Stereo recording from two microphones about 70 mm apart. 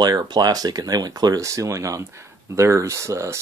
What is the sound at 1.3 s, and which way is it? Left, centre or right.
Speech, right.